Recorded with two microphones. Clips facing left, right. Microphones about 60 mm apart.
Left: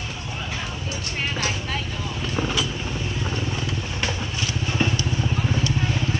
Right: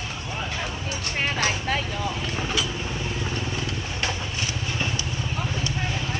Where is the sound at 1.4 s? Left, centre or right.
Right.